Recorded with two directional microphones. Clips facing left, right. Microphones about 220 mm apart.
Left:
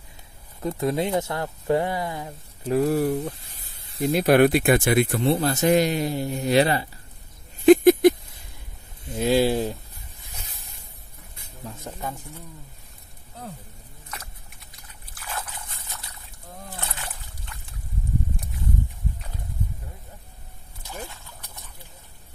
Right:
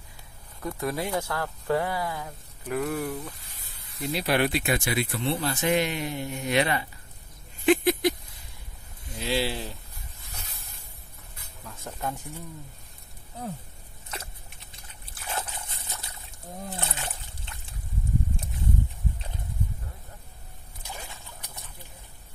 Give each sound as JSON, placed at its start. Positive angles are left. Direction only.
{"t": 0.6, "sound": "speech", "side_deg": 25}
{"t": 3.8, "sound": "snake", "side_deg": 30}
{"t": 4.1, "sound": "speech", "side_deg": 50}
{"t": 7.6, "sound": "a sound", "side_deg": 45}
{"t": 9.2, "sound": "speech", "side_deg": 45}
{"t": 11.9, "sound": "speech", "side_deg": 15}
{"t": 14.7, "sound": "slosh", "side_deg": -25}
{"t": 16.7, "sound": "splash", "side_deg": -25}